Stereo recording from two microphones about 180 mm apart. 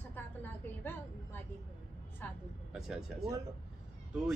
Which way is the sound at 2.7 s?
Centre (ahead or behind).